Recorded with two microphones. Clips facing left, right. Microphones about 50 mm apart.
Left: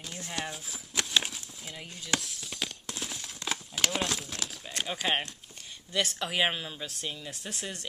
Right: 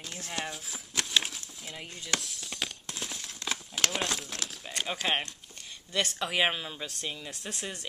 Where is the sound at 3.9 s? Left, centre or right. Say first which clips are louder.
Even; centre.